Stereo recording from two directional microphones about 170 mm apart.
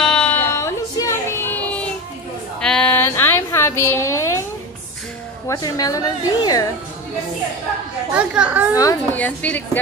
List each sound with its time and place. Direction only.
0.0 s a sound: 5° left (ahead or behind)
5.5 s a woman's voice: 20° left (ahead or behind)
8.1 s speech: 5° right (ahead or behind)
8.7 s a woman's voice: 20° left (ahead or behind)
9.2 s a woman's voice: 10° left (ahead or behind)